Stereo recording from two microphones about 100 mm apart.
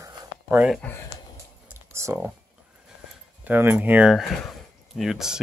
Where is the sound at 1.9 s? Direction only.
30° right (ahead or behind).